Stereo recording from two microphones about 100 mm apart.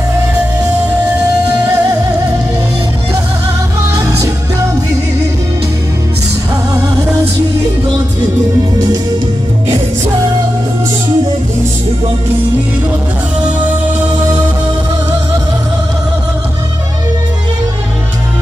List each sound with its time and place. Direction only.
1.7 s music: 35° right (ahead or behind)
4.0 s music: 35° right (ahead or behind)
6.7 s music: 40° right (ahead or behind)
13.6 s music: 15° right (ahead or behind)